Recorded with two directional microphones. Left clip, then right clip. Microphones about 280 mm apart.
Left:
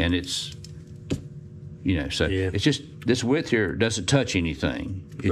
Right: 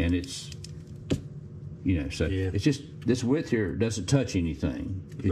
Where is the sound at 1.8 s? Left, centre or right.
Centre.